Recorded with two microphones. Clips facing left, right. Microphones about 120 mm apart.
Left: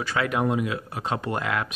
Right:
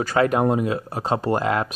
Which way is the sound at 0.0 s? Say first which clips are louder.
Right 6 dB; 40° right (ahead or behind).